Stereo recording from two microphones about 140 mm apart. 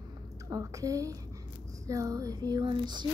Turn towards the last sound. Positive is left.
turn(degrees=-35)  # may be behind; listen again after turning